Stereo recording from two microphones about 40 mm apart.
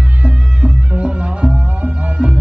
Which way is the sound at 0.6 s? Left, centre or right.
Right.